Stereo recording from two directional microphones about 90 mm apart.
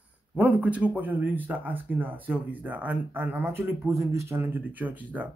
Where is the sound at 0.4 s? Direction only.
15° right (ahead or behind).